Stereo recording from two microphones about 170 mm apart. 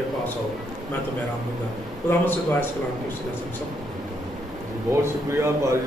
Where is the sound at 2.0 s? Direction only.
10° left (ahead or behind).